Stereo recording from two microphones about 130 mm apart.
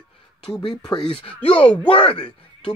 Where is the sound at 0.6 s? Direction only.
35° left (ahead or behind).